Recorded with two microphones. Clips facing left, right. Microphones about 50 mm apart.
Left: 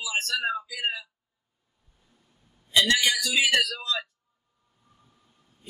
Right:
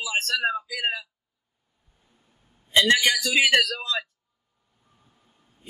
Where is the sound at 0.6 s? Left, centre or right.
Right.